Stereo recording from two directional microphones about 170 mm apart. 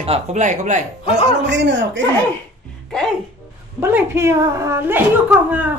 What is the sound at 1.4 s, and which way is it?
Speech, 90° right.